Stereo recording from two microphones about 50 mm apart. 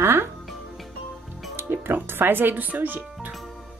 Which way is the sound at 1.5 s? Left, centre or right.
Right.